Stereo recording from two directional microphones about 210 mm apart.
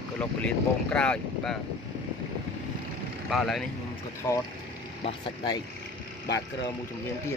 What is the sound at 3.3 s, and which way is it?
Speech, centre (ahead or behind).